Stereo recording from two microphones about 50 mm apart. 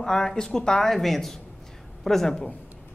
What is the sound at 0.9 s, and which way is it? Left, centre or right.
A woman's voice, centre.